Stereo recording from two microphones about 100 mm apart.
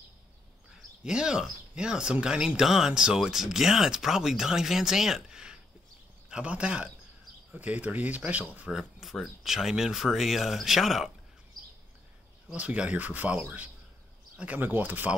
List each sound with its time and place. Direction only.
1.0 s speech: 5° right (ahead or behind)
12.4 s speech: 10° right (ahead or behind)